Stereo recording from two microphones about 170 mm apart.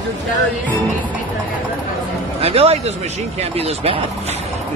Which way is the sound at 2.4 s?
35° right (ahead or behind).